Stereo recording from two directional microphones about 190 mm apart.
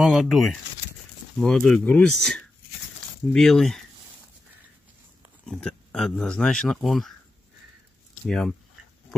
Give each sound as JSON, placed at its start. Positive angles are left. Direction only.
{"t": 0.0, "sound": "speech", "side_deg": 0}
{"t": 5.4, "sound": "speech", "side_deg": 5}
{"t": 8.3, "sound": "speech", "side_deg": 5}